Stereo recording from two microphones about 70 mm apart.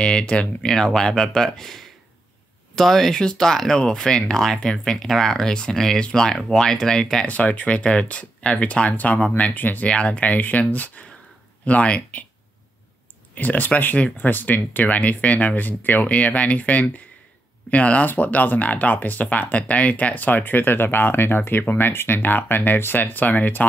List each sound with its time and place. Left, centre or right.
0.0 s speech: centre
7.2 s speech: left
13.3 s speech: left